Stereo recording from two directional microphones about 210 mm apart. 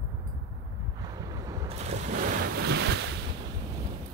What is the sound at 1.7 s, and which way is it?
Boat, 30° right (ahead or behind).